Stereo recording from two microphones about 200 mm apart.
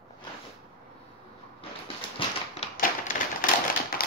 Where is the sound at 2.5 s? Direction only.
40° left (ahead or behind).